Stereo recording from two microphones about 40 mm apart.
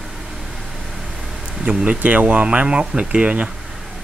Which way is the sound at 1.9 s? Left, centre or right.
Right.